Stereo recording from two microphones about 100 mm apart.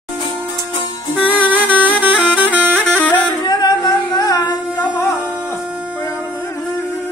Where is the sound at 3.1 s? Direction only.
45° left (ahead or behind).